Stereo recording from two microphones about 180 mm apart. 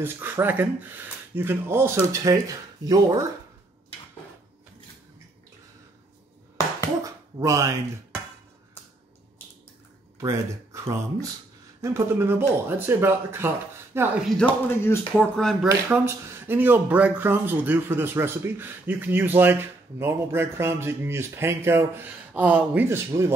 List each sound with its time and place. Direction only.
0.0 s speech: 10° right (ahead or behind)
7.0 s a sound: 20° right (ahead or behind)
10.1 s speech: 15° right (ahead or behind)
14.3 s speech: 10° left (ahead or behind)
15.9 s speech: 10° right (ahead or behind)